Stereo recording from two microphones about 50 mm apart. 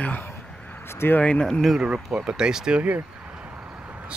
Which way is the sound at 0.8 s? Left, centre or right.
Left.